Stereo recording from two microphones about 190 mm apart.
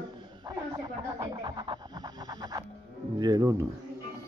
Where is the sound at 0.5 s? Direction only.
25° right (ahead or behind).